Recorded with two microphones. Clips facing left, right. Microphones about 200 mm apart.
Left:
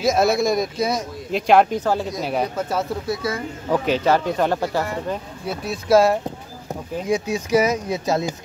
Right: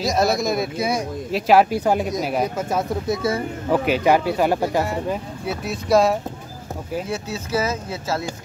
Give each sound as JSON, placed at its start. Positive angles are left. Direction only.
{"t": 0.0, "sound": "speech", "side_deg": 0}
{"t": 3.1, "sound": "speech", "side_deg": -25}
{"t": 3.7, "sound": "speech", "side_deg": -10}
{"t": 5.7, "sound": "speech", "side_deg": 0}
{"t": 7.1, "sound": "speech", "side_deg": 15}